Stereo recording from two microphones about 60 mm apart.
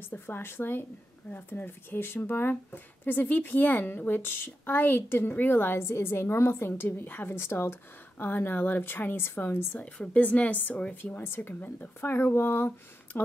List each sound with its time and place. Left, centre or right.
0.1 s speech: left
9.8 s a woman's voice: left